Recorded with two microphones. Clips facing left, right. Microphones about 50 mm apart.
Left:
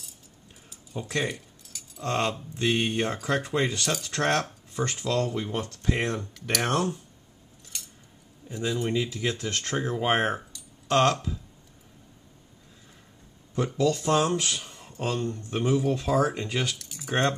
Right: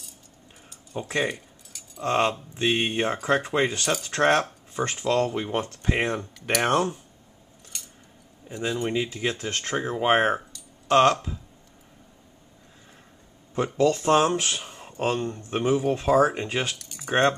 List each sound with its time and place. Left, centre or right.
0.9 s speech: right
1.3 s keys jangling: centre
2.0 s speech: right
7.7 s keys jangling: centre
8.8 s speech: right
13.7 s speech: right
16.7 s typing: centre